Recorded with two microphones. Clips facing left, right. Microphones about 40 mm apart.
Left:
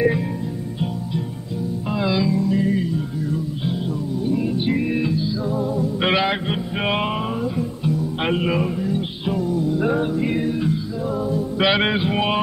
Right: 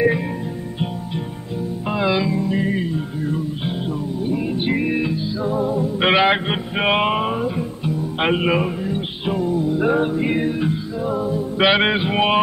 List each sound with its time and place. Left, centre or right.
1.9 s music: right